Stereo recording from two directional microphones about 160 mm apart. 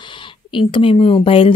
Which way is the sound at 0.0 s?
30° left (ahead or behind).